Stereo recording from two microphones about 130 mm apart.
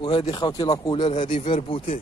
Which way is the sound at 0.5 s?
30° left (ahead or behind).